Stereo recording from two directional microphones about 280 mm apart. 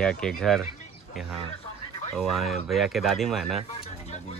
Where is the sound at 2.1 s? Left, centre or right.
Centre.